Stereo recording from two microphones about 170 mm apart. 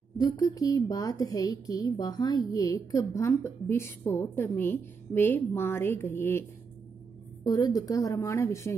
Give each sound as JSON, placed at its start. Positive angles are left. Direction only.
{"t": 0.2, "sound": "a woman's voice", "side_deg": 20}
{"t": 7.4, "sound": "a woman's voice", "side_deg": 20}